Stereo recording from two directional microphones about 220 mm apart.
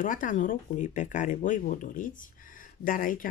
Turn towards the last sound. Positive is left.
turn(degrees=40)  # may be behind; listen again after turning